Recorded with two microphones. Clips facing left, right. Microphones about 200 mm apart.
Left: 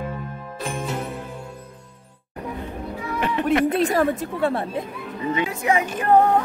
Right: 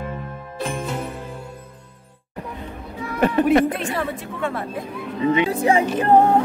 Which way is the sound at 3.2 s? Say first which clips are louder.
Right 7 dB; 45° right (ahead or behind).